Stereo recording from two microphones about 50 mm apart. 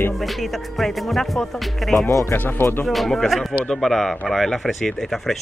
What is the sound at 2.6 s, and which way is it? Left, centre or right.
Speech, left.